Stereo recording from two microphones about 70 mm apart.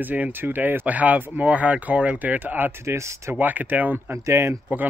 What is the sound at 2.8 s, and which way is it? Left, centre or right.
Speech, right.